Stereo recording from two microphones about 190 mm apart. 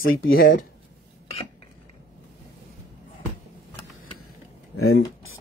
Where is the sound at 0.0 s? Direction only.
90° left.